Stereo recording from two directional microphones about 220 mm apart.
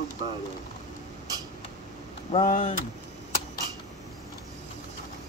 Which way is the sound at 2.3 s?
35° left (ahead or behind).